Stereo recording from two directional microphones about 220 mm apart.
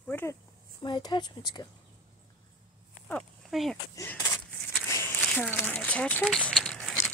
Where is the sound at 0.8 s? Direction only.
20° left (ahead or behind).